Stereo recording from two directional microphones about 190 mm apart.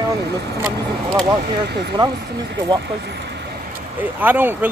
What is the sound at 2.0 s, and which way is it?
Speech, 25° right (ahead or behind).